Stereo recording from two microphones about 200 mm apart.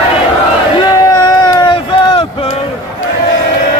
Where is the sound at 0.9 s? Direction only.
20° left (ahead or behind).